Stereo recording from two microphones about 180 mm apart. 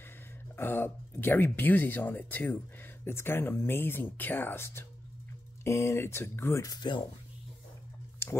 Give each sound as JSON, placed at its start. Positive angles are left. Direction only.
{"t": 0.6, "sound": "speech", "side_deg": 10}